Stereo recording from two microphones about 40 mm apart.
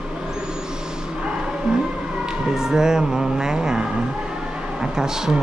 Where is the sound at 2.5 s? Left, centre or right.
Centre.